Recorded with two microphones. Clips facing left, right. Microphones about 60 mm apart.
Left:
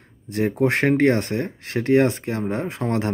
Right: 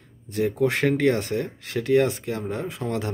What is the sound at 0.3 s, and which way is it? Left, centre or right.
Speech, left.